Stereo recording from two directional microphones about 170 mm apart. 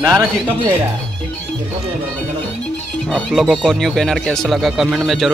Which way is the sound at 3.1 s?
Centre (ahead or behind).